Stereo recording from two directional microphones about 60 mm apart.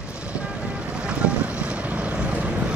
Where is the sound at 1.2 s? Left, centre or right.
Centre.